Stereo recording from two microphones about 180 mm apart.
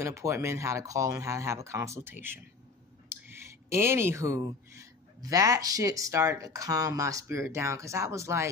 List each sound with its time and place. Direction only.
0.0 s speech: 15° right (ahead or behind)